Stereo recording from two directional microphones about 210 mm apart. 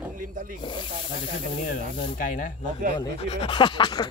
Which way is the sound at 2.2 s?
40° left (ahead or behind).